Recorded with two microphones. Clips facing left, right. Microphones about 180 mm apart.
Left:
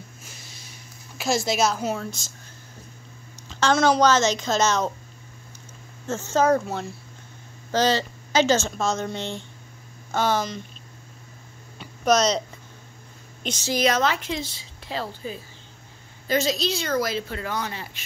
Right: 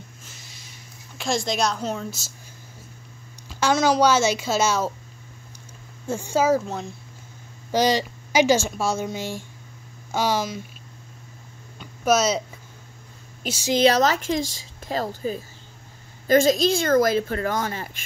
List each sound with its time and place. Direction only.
1.1 s speech: 5° left (ahead or behind)
2.0 s speech: 5° right (ahead or behind)
3.4 s a woman's voice: 10° right (ahead or behind)
6.0 s speech: 10° right (ahead or behind)
6.7 s speech: 5° left (ahead or behind)
7.7 s speech: 15° right (ahead or behind)
11.8 s a sound: 5° right (ahead or behind)
13.4 s a woman's voice: 10° right (ahead or behind)
13.7 s a woman's voice: 35° right (ahead or behind)